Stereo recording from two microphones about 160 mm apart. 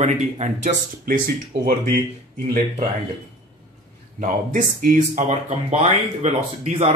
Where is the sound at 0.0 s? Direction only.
45° right (ahead or behind).